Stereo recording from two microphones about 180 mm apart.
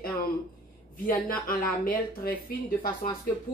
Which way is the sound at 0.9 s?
50° left (ahead or behind).